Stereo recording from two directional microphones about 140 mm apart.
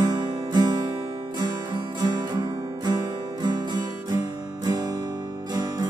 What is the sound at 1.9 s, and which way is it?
Music, 30° right (ahead or behind).